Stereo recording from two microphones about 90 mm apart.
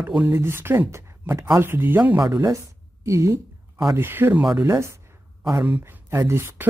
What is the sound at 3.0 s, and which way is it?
Speech, 35° right (ahead or behind).